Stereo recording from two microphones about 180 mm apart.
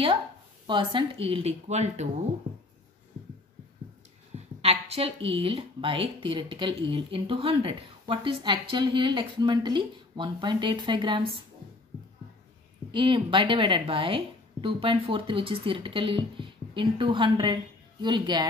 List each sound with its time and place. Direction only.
0.7 s speech: 25° right (ahead or behind)
4.6 s a woman's voice: 35° right (ahead or behind)
12.9 s a woman's voice: 25° right (ahead or behind)